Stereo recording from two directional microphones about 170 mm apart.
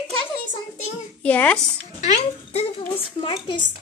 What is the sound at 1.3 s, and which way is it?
Speech, 10° left (ahead or behind).